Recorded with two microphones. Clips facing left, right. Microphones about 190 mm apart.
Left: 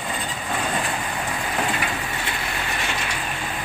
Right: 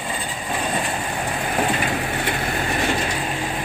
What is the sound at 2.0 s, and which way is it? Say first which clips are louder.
Vehicle: right 5 dB; 55° right (ahead or behind).